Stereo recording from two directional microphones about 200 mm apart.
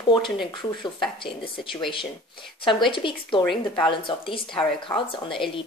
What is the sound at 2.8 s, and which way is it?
A woman's voice, 25° left (ahead or behind).